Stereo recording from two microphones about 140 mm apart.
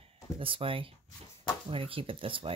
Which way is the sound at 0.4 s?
40° right (ahead or behind).